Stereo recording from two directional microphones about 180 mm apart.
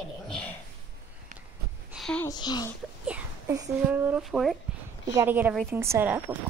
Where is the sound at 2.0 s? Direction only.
5° left (ahead or behind).